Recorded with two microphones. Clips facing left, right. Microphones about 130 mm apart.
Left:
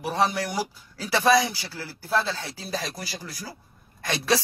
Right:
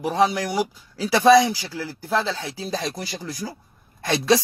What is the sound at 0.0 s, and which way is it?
Speech, 20° right (ahead or behind).